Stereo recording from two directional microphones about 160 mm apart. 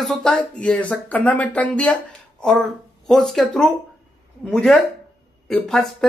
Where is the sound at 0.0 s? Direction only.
Centre (ahead or behind).